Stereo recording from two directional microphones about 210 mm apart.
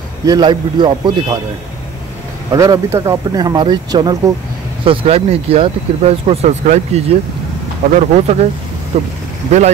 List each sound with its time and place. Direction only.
0.2 s speech: 20° right (ahead or behind)
2.5 s speech: 15° right (ahead or behind)